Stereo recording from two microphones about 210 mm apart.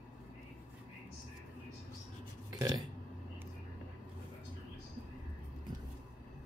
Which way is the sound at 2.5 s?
20° right (ahead or behind).